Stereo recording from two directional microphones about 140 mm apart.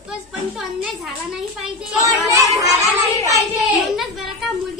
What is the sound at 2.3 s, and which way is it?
Music, 25° right (ahead or behind).